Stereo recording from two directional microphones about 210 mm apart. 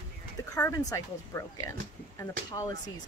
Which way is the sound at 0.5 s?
15° left (ahead or behind).